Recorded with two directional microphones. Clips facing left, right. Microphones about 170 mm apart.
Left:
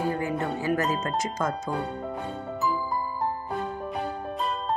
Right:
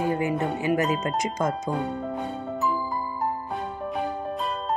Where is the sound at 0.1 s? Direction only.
20° right (ahead or behind).